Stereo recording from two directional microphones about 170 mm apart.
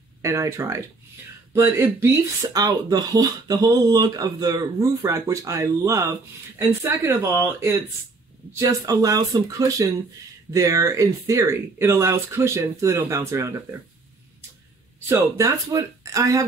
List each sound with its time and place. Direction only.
0.2 s speech: 15° right (ahead or behind)
15.0 s speech: 15° right (ahead or behind)